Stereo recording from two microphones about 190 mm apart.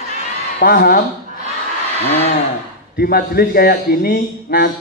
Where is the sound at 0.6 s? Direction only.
50° left (ahead or behind).